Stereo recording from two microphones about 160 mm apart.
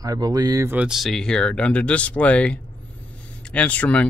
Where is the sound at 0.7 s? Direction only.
5° right (ahead or behind).